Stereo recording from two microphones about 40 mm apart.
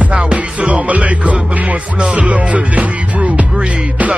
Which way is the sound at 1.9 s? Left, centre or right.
Right.